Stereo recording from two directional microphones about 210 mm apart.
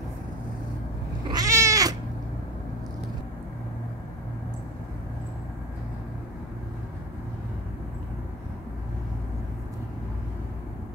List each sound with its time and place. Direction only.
1.3 s cat: 15° right (ahead or behind)